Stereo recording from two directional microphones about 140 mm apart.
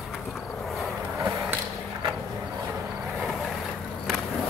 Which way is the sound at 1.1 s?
15° right (ahead or behind).